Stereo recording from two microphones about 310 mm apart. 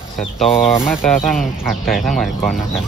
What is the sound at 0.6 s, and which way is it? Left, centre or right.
Speech, centre.